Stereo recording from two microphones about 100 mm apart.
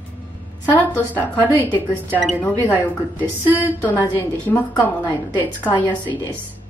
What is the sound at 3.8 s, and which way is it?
A woman's voice, 20° left (ahead or behind).